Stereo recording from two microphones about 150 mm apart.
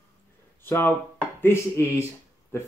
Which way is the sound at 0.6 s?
15° left (ahead or behind).